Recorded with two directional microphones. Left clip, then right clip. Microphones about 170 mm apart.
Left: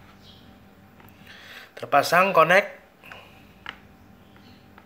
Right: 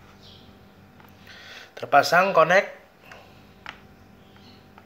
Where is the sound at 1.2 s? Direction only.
5° left (ahead or behind).